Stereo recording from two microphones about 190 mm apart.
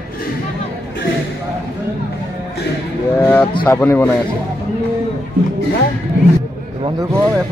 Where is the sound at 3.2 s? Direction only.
10° left (ahead or behind).